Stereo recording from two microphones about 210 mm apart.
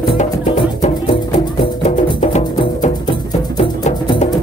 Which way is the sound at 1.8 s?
35° left (ahead or behind).